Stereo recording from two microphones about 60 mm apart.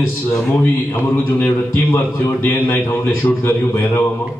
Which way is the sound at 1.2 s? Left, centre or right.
Left.